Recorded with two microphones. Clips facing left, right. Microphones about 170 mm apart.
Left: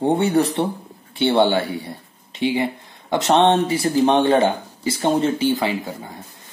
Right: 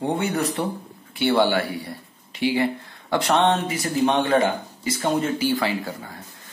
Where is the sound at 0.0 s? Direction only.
30° left (ahead or behind).